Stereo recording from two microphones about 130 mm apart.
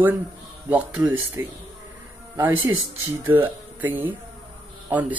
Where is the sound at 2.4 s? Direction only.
15° right (ahead or behind).